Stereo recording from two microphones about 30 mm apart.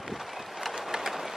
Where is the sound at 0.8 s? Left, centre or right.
Centre.